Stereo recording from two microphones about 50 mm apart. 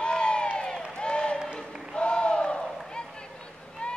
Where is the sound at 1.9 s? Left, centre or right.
Centre.